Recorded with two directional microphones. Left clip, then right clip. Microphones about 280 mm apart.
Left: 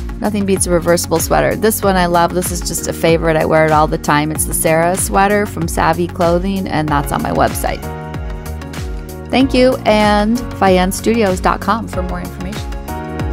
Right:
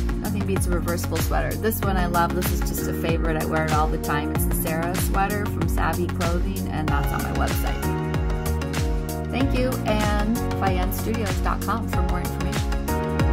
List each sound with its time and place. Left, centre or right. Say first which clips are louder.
0.2 s speech: left 13 dB; left
9.3 s speech: left 14 dB; left